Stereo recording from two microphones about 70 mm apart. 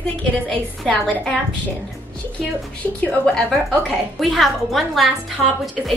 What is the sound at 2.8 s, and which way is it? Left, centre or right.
Speech, left.